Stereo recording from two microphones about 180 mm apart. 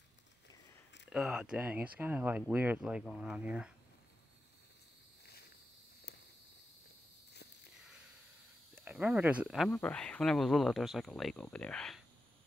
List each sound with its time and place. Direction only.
1.1 s speech: 5° right (ahead or behind)
8.7 s speech: 10° right (ahead or behind)
9.7 s speech: 10° left (ahead or behind)